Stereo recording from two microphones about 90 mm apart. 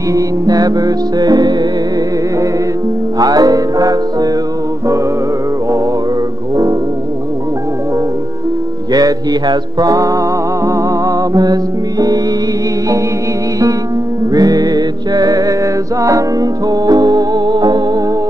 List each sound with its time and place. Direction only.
0.1 s music: 45° right (ahead or behind)
3.2 s music: 45° right (ahead or behind)
8.9 s music: 45° right (ahead or behind)
14.3 s music: 45° right (ahead or behind)